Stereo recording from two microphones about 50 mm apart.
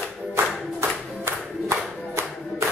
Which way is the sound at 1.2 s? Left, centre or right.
Right.